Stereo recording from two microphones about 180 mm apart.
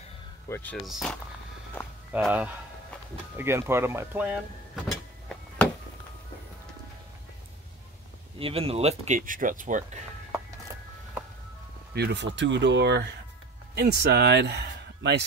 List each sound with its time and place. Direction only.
0.5 s speech: 10° left (ahead or behind)
0.8 s speech: centre (ahead or behind)
1.8 s speech: 10° left (ahead or behind)
2.1 s speech: 5° right (ahead or behind)
4.8 s a sound: centre (ahead or behind)
8.4 s speech: 30° right (ahead or behind)
11.9 s speech: 65° right (ahead or behind)
12.4 s speech: 85° right